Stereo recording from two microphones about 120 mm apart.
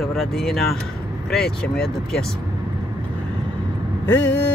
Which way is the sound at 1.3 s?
5° left (ahead or behind).